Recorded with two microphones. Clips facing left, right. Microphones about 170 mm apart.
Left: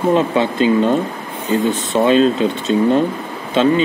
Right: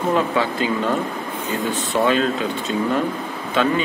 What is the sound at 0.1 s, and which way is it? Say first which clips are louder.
Speech: left 3 dB; 20° left (ahead or behind).